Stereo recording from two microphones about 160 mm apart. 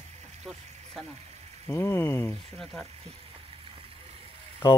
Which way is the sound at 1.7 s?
15° left (ahead or behind).